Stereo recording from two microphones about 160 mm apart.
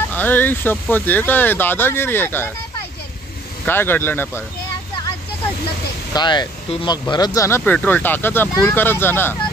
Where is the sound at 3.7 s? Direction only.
15° left (ahead or behind).